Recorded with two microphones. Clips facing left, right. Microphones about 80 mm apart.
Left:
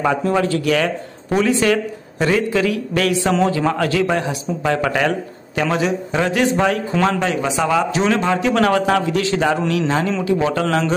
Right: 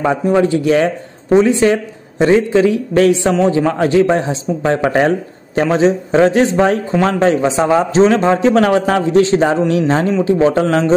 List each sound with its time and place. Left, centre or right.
0.2 s a man's voice: centre